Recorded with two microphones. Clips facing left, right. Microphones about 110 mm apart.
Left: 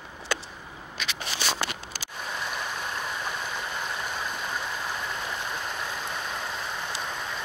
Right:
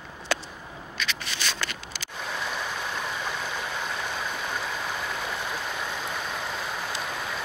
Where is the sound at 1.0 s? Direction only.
15° left (ahead or behind).